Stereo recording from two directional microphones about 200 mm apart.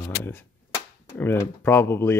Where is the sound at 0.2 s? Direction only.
10° left (ahead or behind).